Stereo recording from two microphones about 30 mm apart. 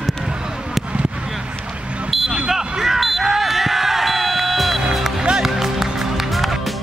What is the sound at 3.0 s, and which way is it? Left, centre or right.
Music, centre.